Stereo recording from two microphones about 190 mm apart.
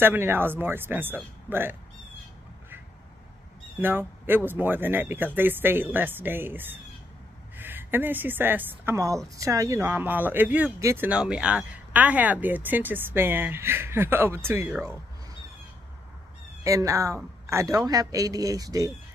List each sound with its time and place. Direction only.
0.0 s speech: 10° right (ahead or behind)
3.7 s a woman's voice: 10° right (ahead or behind)
16.6 s speech: 15° right (ahead or behind)